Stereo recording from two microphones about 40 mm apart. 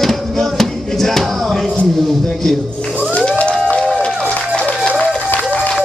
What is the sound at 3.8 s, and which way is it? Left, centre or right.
Music, centre.